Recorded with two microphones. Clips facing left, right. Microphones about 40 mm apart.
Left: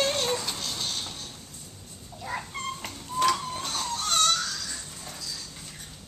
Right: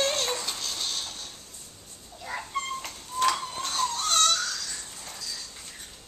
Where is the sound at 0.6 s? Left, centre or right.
Centre.